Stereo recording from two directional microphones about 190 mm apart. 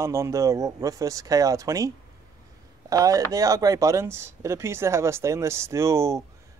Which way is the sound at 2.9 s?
20° right (ahead or behind).